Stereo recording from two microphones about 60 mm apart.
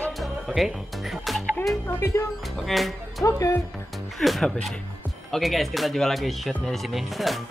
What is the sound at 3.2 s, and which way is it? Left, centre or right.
Speech, left.